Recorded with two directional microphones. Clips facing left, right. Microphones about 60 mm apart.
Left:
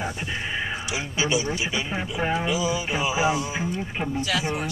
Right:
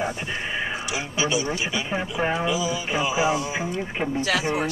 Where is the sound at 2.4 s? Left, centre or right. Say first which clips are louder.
Even; centre.